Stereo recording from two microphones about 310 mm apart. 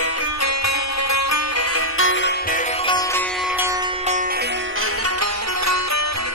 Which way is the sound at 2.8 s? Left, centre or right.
Centre.